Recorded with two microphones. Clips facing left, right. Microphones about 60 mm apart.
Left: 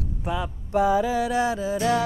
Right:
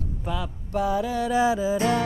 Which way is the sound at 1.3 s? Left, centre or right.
Centre.